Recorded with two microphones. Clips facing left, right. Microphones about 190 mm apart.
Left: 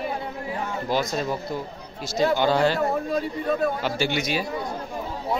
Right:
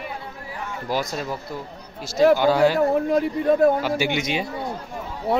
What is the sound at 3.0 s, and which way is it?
Speech, 55° right (ahead or behind).